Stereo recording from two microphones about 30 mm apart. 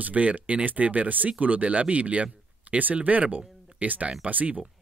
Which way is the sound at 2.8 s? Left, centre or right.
Right.